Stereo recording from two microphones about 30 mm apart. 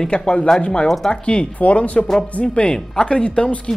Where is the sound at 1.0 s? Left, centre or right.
Centre.